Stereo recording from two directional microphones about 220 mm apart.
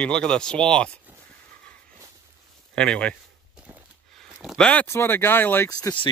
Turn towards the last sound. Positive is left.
turn(degrees=20)  # may be behind; listen again after turning